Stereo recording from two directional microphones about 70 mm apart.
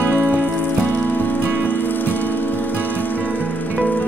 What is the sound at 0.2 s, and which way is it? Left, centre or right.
Music, left.